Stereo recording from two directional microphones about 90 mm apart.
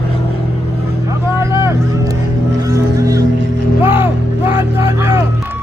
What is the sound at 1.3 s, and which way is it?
Vehicle, 35° right (ahead or behind).